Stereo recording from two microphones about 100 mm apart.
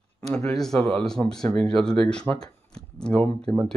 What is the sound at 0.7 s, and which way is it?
Speech, 75° right (ahead or behind).